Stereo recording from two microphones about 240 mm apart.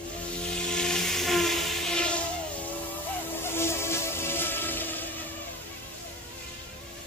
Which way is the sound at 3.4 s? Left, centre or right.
Centre.